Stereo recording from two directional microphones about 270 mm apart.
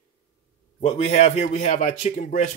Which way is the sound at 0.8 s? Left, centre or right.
Left.